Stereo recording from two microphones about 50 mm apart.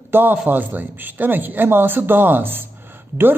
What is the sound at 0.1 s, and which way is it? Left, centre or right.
A man's voice, right.